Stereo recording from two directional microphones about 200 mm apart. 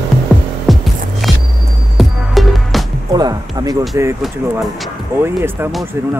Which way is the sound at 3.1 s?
20° right (ahead or behind).